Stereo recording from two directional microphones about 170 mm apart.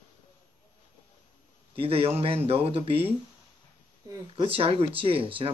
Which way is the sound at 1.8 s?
35° right (ahead or behind).